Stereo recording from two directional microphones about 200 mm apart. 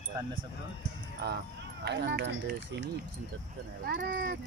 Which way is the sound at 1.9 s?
60° right (ahead or behind).